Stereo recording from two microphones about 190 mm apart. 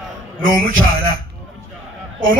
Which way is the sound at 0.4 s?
45° right (ahead or behind).